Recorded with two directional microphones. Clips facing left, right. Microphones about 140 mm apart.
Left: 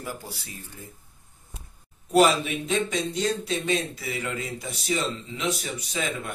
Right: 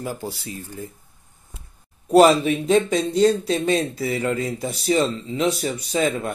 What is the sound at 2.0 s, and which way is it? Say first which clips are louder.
Speech: right 6 dB; 35° right (ahead or behind).